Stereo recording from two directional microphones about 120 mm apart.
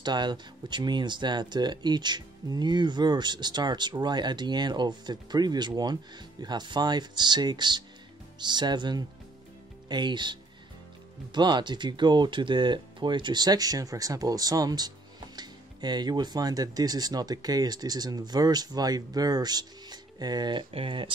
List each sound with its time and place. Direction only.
0.0 s speech: 40° right (ahead or behind)